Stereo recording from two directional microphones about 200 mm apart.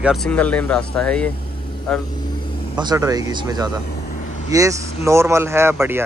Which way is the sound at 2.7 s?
20° right (ahead or behind).